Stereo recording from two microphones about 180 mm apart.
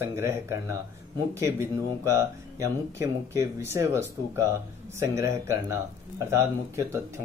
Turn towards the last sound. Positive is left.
turn(degrees=-15)  # may be behind; listen again after turning